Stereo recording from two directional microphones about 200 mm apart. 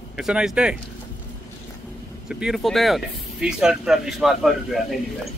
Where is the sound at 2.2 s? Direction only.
5° right (ahead or behind).